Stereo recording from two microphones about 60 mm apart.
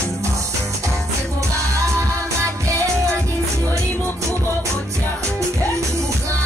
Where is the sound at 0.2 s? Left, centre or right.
Right.